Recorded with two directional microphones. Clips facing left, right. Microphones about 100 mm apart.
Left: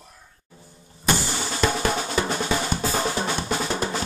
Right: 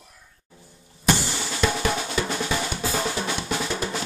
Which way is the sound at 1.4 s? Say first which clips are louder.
Left 1 dB; 35° left (ahead or behind).